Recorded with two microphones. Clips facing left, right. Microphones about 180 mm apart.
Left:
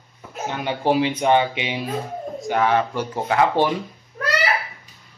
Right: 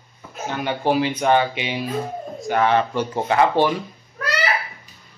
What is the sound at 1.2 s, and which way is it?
Speech, 20° left (ahead or behind).